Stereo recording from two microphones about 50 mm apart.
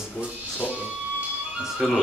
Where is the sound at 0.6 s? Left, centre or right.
Right.